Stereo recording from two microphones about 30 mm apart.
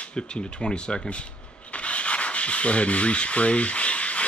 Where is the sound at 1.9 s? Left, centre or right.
Left.